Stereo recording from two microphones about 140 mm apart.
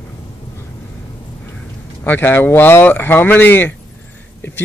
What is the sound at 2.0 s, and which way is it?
Speech, 15° left (ahead or behind).